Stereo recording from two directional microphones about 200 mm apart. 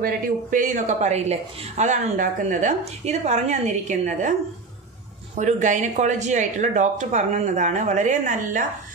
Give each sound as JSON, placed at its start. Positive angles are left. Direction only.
{"t": 0.0, "sound": "speech", "side_deg": -40}
{"t": 5.3, "sound": "speech", "side_deg": -40}